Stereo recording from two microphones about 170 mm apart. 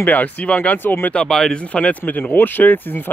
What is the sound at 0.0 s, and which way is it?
Speech, 10° left (ahead or behind).